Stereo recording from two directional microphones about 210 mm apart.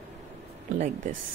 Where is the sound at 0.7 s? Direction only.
35° right (ahead or behind).